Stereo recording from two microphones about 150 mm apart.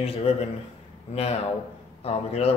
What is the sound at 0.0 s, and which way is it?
Speech, 40° left (ahead or behind).